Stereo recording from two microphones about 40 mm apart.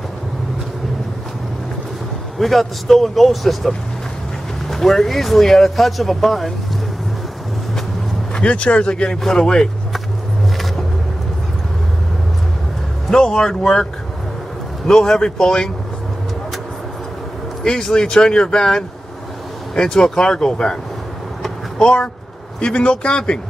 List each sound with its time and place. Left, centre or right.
2.3 s speech: centre
8.4 s speech: left
13.1 s speech: centre
14.9 s speech: centre
17.6 s speech: centre
22.6 s speech: left